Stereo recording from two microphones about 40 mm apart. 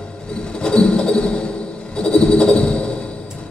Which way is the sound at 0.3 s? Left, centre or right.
Left.